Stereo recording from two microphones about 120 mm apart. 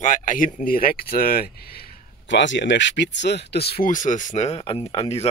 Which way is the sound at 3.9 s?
90° left.